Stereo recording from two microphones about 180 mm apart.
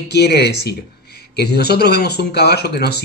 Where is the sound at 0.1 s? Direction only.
65° left (ahead or behind).